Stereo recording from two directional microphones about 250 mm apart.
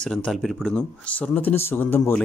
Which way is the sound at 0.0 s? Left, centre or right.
Centre.